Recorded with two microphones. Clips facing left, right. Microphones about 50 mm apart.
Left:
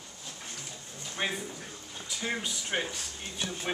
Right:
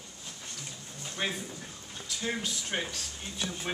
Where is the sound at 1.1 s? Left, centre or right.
Centre.